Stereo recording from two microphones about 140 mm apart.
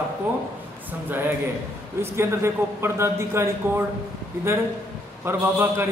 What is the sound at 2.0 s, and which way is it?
A man's voice, 20° right (ahead or behind).